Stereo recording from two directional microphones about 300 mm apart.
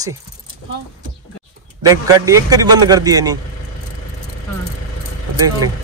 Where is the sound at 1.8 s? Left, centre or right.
Centre.